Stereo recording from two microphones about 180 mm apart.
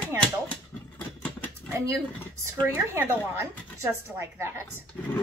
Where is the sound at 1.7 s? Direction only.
15° right (ahead or behind).